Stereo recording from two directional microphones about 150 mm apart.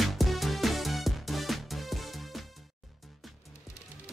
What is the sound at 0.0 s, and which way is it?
Music, centre (ahead or behind).